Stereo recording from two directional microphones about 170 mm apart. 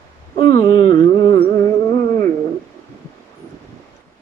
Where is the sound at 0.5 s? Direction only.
25° left (ahead or behind).